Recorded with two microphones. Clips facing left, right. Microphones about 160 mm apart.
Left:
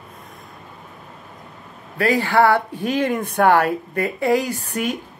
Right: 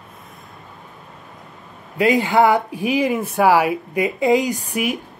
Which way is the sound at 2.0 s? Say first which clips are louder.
Right 2 dB; 20° right (ahead or behind).